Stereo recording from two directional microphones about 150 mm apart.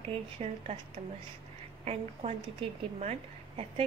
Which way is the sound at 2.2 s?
40° right (ahead or behind).